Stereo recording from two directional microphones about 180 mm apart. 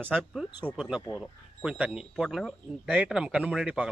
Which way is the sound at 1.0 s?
10° left (ahead or behind).